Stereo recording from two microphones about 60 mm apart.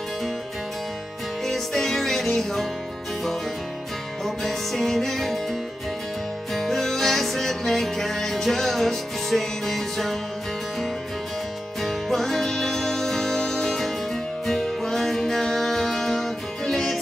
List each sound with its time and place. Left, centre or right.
1.4 s music: centre
4.2 s music: centre
11.8 s music: centre